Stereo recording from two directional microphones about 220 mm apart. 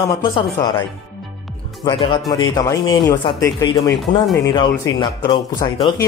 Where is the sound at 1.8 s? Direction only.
20° left (ahead or behind).